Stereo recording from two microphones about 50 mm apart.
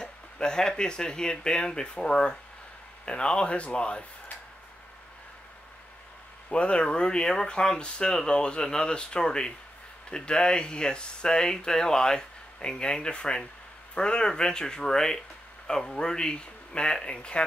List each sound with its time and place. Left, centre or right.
0.0 s speech: centre
6.5 s speech: left